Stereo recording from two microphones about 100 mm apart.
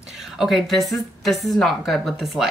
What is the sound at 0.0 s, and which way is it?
Speech, 5° right (ahead or behind).